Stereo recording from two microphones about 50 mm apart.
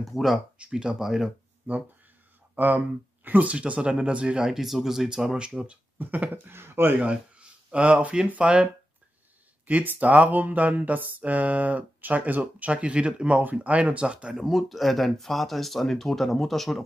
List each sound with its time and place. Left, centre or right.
0.0 s speech: centre
0.6 s speech: centre
2.5 s speech: right
4.5 s speech: centre
5.9 s speech: right
6.4 s speech: right
7.0 s speech: right
9.7 s speech: right
14.3 s speech: centre